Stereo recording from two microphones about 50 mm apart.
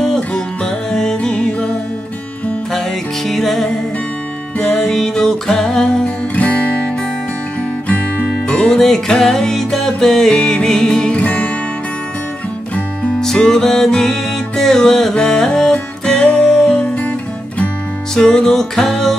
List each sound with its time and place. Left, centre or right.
0.0 s music: centre
3.3 s music: centre
6.3 s music: left
8.5 s music: centre
11.1 s music: left
13.2 s music: centre
18.1 s music: centre